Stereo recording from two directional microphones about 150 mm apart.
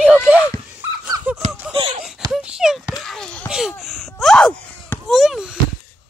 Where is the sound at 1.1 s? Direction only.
25° right (ahead or behind).